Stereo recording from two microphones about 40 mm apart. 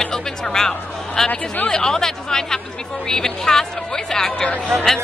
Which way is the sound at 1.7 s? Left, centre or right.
Centre.